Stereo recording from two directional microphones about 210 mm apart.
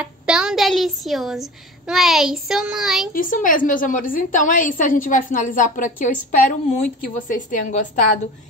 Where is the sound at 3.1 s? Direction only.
40° left (ahead or behind).